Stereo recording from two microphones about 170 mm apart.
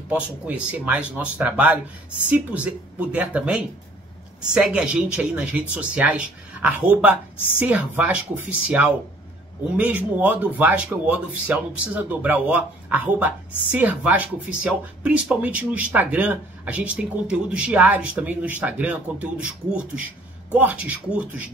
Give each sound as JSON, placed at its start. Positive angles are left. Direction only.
{"t": 0.1, "sound": "speech", "side_deg": -10}